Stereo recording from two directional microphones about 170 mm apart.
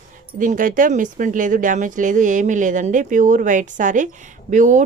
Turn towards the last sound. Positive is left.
turn(degrees=-45)  # may be behind; listen again after turning